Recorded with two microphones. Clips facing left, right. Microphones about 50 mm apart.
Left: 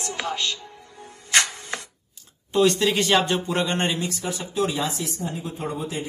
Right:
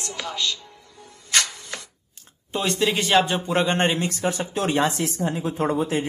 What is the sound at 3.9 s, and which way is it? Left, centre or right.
Speech, right.